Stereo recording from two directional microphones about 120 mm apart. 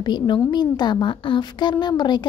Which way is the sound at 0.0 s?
35° left (ahead or behind).